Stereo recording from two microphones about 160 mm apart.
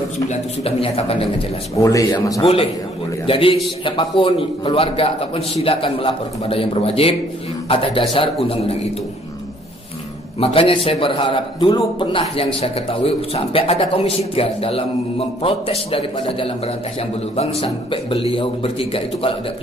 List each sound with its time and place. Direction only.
0.3 s a man's voice: 40° left (ahead or behind)
1.8 s speech: 20° left (ahead or behind)
2.4 s a man's voice: 35° left (ahead or behind)
10.4 s a man's voice: 35° left (ahead or behind)